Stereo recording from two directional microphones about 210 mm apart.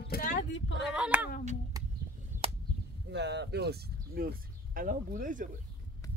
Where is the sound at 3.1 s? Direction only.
55° right (ahead or behind); by 5.5 s 40° right (ahead or behind).